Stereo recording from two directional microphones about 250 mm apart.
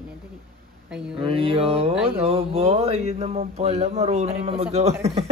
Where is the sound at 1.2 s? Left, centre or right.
Right.